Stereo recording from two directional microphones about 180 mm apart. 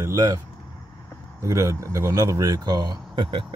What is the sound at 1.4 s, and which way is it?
Speech, 15° right (ahead or behind).